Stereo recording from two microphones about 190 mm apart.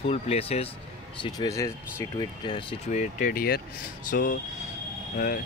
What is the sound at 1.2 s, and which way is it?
Speech, 20° left (ahead or behind).